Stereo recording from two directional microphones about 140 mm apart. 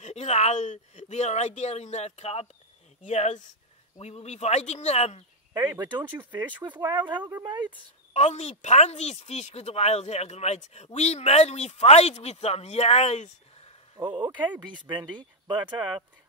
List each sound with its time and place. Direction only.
0.0 s speech: 50° left (ahead or behind)
5.5 s speech: 30° right (ahead or behind)
8.1 s speech: 50° left (ahead or behind)
13.9 s speech: 35° right (ahead or behind)